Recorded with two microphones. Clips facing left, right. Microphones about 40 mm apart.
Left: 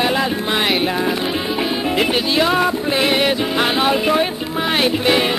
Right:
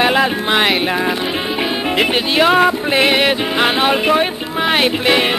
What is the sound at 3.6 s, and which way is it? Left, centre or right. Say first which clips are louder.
Speech: right 3 dB; right.